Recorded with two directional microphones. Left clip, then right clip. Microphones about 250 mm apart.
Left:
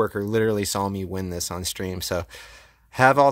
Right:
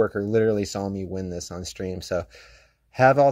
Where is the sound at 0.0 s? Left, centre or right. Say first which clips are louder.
Right 1 dB; centre.